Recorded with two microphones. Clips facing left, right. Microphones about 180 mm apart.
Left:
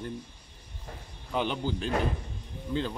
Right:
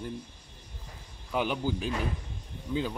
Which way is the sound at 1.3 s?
5° right (ahead or behind).